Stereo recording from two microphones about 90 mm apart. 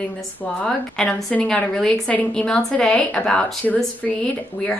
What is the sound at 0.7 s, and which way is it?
A woman's voice, 10° left (ahead or behind).